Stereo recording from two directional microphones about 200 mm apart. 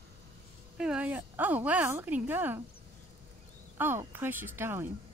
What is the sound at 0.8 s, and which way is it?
Speech, 5° right (ahead or behind).